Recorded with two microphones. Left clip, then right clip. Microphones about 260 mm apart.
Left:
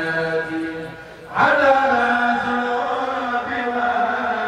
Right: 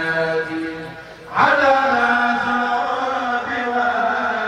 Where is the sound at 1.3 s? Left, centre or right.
Right.